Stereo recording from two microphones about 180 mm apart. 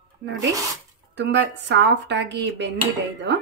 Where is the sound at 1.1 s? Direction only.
75° right (ahead or behind).